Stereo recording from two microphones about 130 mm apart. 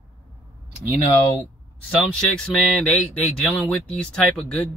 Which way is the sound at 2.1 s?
5° left (ahead or behind).